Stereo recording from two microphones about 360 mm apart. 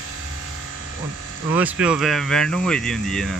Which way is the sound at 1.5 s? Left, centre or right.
Centre.